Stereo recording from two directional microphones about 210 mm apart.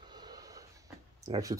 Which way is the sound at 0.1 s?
20° right (ahead or behind).